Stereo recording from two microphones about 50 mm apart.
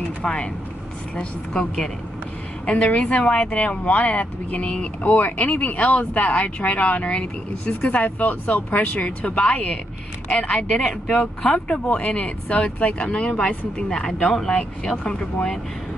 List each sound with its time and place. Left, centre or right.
0.2 s speech: centre